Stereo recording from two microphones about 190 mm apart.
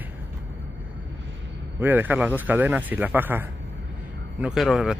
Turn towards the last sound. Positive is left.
turn(degrees=0)  # may be behind; listen again after turning